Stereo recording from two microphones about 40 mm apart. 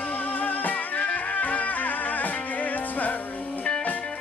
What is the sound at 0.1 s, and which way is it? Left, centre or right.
Music, left.